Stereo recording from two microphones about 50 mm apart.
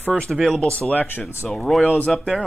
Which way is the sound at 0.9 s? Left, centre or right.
Left.